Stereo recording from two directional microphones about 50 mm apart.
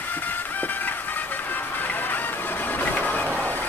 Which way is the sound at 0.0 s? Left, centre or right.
Left.